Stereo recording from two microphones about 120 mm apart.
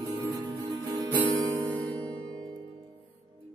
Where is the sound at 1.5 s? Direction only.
15° left (ahead or behind).